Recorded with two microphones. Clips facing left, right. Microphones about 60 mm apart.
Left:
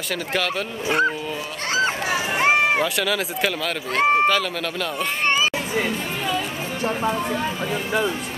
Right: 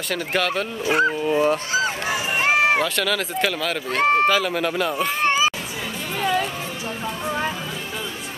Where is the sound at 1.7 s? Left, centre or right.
Left.